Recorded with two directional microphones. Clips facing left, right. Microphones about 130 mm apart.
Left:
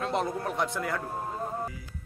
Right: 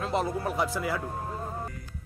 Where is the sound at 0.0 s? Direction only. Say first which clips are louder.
Right 1 dB; centre (ahead or behind).